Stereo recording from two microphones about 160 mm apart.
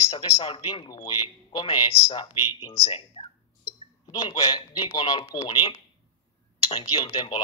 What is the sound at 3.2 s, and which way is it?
Clicking, 30° left (ahead or behind).